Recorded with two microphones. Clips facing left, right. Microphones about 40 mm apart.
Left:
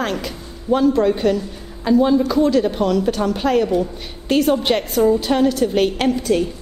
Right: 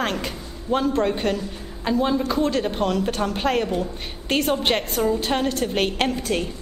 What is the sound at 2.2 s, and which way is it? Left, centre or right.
A man's voice, right.